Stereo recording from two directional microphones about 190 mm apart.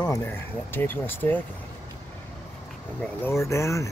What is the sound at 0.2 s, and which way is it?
Speech, 10° left (ahead or behind).